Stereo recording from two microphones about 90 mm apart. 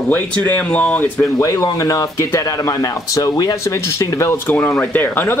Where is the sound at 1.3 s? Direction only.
35° left (ahead or behind).